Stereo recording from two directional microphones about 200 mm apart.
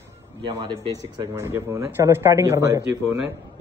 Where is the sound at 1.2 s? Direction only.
10° right (ahead or behind).